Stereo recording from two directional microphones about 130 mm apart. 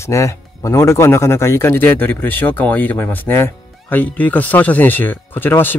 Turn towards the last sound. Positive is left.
turn(degrees=15)  # may be behind; listen again after turning